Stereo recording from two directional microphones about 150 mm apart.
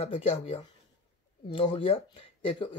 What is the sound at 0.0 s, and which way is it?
Speech, 40° left (ahead or behind).